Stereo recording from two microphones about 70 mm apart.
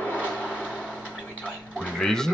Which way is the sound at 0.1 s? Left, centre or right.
Left.